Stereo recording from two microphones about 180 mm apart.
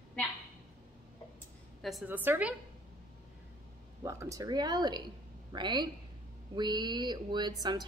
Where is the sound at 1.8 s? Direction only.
5° right (ahead or behind).